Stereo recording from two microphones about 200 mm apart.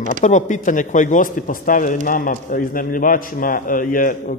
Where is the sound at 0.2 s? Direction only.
40° left (ahead or behind).